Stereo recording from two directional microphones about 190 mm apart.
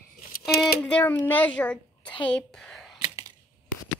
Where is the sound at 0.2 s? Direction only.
50° left (ahead or behind).